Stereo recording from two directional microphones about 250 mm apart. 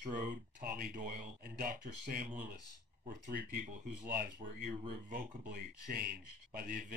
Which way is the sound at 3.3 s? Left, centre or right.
Right.